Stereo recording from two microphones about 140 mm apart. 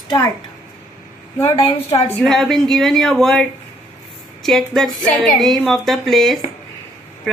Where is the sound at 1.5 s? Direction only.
40° left (ahead or behind).